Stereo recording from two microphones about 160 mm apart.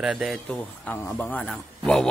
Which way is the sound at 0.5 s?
10° left (ahead or behind).